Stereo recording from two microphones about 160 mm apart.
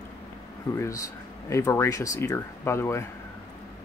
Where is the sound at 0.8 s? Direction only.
20° left (ahead or behind).